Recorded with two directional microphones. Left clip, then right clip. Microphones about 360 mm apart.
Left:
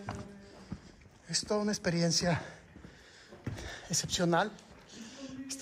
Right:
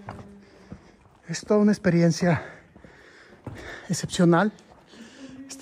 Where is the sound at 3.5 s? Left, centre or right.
Centre.